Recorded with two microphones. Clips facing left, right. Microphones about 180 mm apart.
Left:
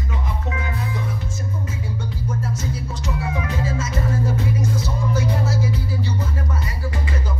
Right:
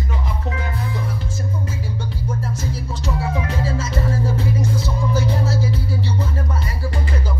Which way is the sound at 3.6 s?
30° right (ahead or behind).